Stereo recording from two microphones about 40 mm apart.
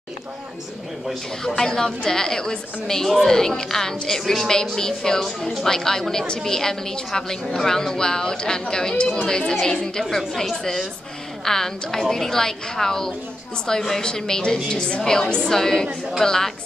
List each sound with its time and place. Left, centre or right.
1.6 s a woman's voice: centre